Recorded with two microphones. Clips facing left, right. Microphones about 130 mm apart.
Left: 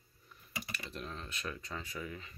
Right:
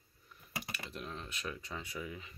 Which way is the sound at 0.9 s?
10° right (ahead or behind).